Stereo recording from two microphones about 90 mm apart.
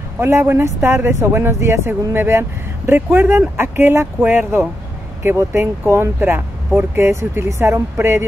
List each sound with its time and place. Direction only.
0.2 s speech: 30° right (ahead or behind)